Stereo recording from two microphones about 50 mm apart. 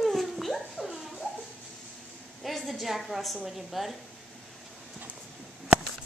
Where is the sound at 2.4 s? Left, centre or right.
Centre.